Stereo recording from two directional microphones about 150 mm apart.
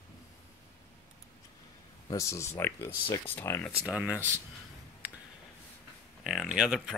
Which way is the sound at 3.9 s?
10° right (ahead or behind).